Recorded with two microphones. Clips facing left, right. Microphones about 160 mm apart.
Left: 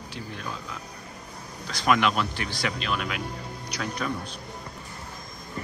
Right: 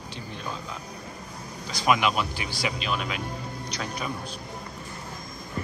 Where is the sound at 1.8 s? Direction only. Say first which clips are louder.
Even; 5° right (ahead or behind).